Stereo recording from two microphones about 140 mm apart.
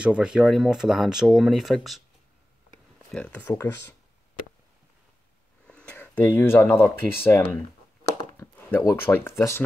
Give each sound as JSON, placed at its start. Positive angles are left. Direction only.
{"t": 0.0, "sound": "speech", "side_deg": -5}
{"t": 3.1, "sound": "speech", "side_deg": 10}
{"t": 5.7, "sound": "speech", "side_deg": 10}
{"t": 8.4, "sound": "a sound", "side_deg": 15}
{"t": 8.8, "sound": "speech", "side_deg": 15}